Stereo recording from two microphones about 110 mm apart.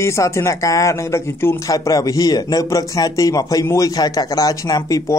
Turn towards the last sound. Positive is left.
turn(degrees=35)  # may be behind; listen again after turning